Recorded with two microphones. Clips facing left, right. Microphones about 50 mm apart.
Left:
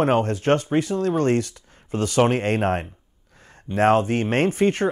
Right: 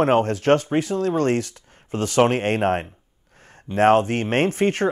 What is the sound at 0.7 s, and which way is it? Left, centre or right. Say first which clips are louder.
Speech: even; right.